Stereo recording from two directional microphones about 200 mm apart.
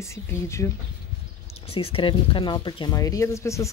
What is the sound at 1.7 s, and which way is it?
Speech, 30° left (ahead or behind).